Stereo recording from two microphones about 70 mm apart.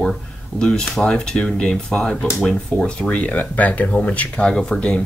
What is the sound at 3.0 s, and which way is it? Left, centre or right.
Speech, centre.